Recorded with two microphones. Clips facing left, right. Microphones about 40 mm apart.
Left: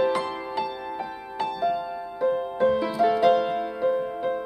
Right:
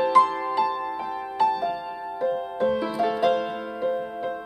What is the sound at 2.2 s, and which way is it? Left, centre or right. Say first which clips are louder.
Music: left 2 dB; centre.